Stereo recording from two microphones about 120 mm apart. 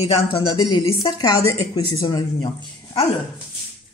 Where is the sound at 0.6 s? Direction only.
40° left (ahead or behind).